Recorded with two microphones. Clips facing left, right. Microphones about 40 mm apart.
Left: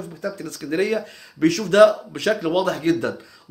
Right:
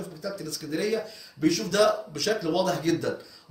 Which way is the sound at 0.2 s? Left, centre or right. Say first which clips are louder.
Left 6 dB; left.